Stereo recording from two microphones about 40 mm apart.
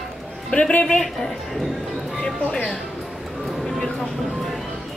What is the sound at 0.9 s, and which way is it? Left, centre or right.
Speech, centre.